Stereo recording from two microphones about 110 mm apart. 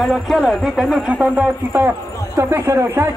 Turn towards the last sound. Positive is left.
turn(degrees=-25)  # may be behind; listen again after turning